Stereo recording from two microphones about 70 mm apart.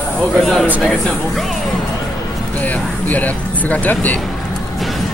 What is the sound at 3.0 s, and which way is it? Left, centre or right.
Speech, left.